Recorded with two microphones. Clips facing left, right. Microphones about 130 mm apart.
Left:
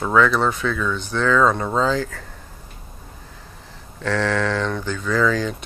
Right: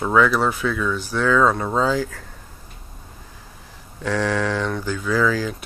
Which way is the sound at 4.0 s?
10° right (ahead or behind).